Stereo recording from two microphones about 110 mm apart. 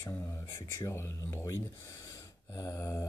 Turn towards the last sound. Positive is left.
turn(degrees=30)  # may be behind; listen again after turning